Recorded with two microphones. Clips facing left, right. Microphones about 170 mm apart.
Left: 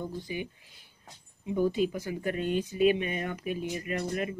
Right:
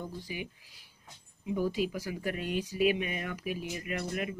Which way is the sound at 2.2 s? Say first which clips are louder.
Left 5 dB; 5° right (ahead or behind).